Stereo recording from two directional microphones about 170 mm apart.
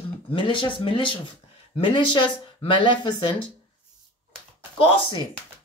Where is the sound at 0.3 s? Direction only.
30° left (ahead or behind).